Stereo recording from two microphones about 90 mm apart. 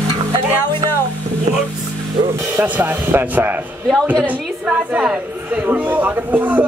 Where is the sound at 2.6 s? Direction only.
25° right (ahead or behind).